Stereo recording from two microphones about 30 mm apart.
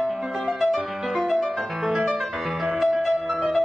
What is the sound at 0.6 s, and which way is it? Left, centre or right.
Music, centre.